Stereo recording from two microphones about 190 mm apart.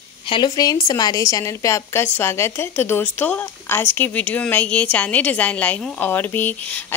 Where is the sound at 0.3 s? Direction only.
20° left (ahead or behind).